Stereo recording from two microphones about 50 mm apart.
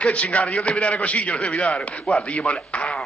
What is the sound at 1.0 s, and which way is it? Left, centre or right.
Speech, left.